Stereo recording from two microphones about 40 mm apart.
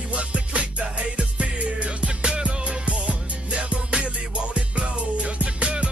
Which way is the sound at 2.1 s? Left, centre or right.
Right.